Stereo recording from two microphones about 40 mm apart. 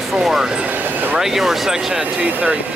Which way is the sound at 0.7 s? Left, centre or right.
Right.